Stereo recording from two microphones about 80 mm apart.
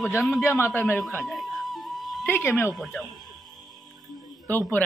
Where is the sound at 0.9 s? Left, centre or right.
Centre.